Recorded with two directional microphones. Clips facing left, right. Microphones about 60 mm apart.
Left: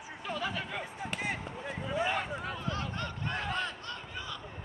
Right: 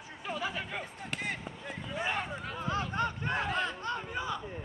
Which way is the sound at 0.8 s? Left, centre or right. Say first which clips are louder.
Left 2 dB; centre.